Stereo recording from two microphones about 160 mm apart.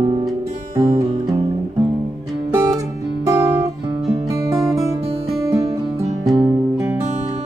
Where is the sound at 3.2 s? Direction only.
20° right (ahead or behind).